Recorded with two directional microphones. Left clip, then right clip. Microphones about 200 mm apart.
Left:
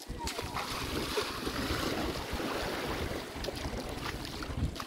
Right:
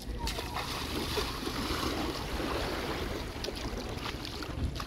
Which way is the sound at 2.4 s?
20° right (ahead or behind).